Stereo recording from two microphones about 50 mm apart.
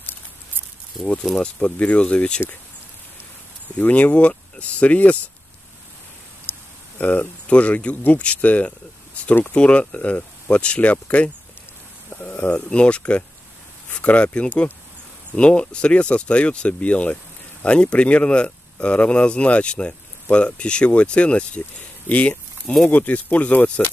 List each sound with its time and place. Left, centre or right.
1.0 s speech: centre
1.4 s speech: left
3.7 s speech: left
6.5 s a sound: left
7.0 s speech: left
7.4 s speech: left
12.6 s speech: left